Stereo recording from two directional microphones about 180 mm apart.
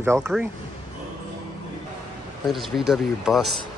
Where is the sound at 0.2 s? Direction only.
Centre (ahead or behind).